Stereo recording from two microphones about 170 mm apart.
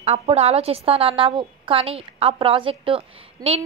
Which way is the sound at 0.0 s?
35° right (ahead or behind).